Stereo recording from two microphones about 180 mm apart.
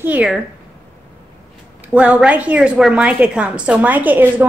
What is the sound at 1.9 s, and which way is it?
A woman's voice, 5° right (ahead or behind).